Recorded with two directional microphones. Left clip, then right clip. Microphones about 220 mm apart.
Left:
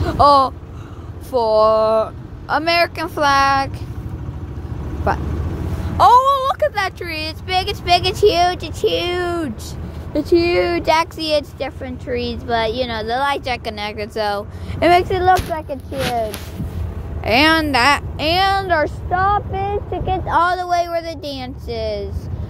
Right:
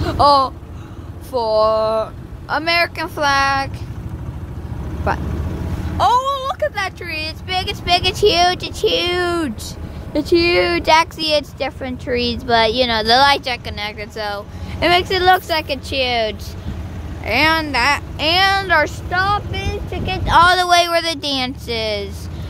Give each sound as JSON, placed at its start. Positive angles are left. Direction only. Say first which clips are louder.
{"t": 0.0, "sound": "vehicle", "louder": "left 1 dB", "side_deg": 0}
{"t": 1.3, "sound": "speech", "louder": "left 2 dB", "side_deg": 5}
{"t": 5.1, "sound": "speech", "louder": "left 1 dB", "side_deg": 0}
{"t": 5.9, "sound": "speech", "louder": "left 5 dB", "side_deg": 20}
{"t": 13.7, "sound": "speech", "louder": "left 1 dB", "side_deg": 5}
{"t": 15.0, "sound": "speech", "louder": "right 1 dB", "side_deg": -25}
{"t": 17.2, "sound": "speech", "louder": "left 2 dB", "side_deg": 5}
{"t": 20.4, "sound": "speech", "louder": "right 5 dB", "side_deg": -20}